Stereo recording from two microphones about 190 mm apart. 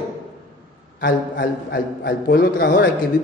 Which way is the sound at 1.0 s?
60° left (ahead or behind).